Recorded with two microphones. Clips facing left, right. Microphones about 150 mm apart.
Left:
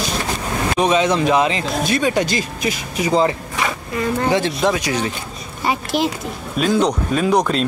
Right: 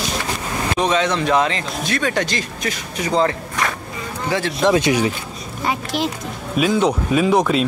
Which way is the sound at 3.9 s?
70° left (ahead or behind).